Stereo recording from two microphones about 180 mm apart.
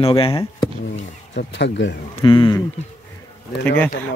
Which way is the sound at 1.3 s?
75° left (ahead or behind).